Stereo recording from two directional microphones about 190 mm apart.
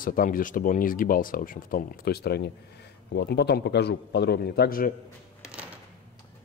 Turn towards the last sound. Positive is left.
turn(degrees=55)  # may be behind; listen again after turning